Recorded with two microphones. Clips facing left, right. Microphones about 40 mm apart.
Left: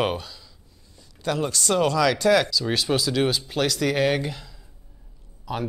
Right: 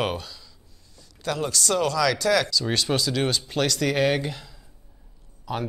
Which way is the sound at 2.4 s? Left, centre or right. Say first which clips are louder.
Left 1 dB; centre.